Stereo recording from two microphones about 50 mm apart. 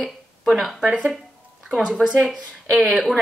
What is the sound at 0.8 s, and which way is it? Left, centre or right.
A woman's voice, right.